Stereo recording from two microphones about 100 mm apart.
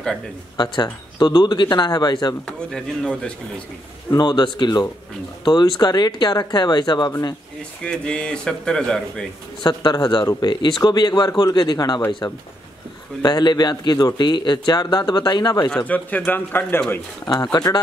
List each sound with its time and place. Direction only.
1.1 s a man's voice: 45° left (ahead or behind)
2.7 s speech: 5° left (ahead or behind)
4.2 s a man's voice: 45° left (ahead or behind)
7.8 s speech: 10° left (ahead or behind)
9.6 s a man's voice: 45° left (ahead or behind)
15.7 s speech: 15° left (ahead or behind)
17.3 s speech: 45° left (ahead or behind)